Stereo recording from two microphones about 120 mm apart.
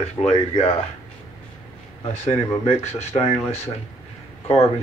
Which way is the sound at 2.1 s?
70° left (ahead or behind).